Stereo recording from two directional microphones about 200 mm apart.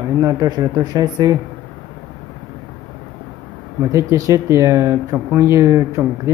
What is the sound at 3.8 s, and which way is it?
Speech, 15° right (ahead or behind).